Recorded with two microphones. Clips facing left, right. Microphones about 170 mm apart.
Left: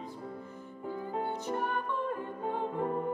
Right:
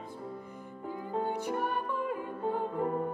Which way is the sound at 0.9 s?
15° right (ahead or behind).